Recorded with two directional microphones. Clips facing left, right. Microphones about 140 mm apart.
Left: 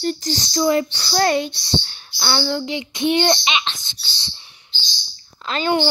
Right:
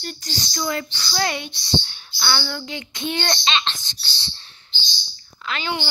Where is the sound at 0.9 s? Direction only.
40° left (ahead or behind); by 3.6 s 15° left (ahead or behind).